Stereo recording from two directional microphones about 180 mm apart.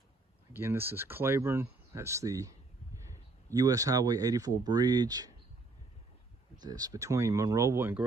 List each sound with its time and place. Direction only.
0.5 s speech: 10° right (ahead or behind)
3.5 s speech: 20° right (ahead or behind)
6.6 s speech: 20° right (ahead or behind)